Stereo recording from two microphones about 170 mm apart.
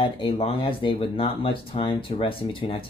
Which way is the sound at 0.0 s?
30° left (ahead or behind).